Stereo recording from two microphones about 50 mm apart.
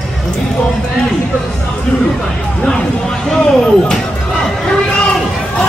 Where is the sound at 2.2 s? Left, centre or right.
Centre.